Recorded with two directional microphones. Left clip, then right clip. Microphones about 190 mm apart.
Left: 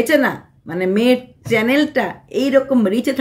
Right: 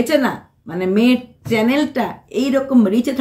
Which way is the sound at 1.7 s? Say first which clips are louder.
Left 2 dB; 5° left (ahead or behind).